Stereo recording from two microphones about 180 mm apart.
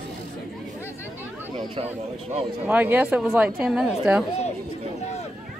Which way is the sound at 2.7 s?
10° right (ahead or behind).